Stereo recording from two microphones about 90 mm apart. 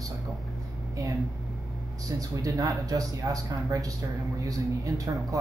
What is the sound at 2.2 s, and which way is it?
Speech, 40° right (ahead or behind).